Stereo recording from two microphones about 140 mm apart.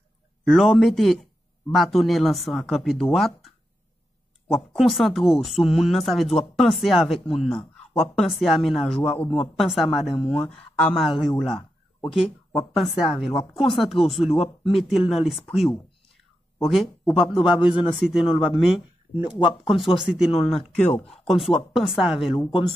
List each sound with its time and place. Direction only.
0.5 s speech: centre (ahead or behind)
17.0 s speech: centre (ahead or behind)
18.2 s speech: 40° left (ahead or behind)
19.8 s speech: 5° right (ahead or behind)
20.9 s speech: 45° left (ahead or behind)
21.3 s speech: centre (ahead or behind)